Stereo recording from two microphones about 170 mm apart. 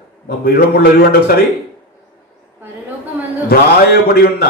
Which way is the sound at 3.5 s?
60° left (ahead or behind).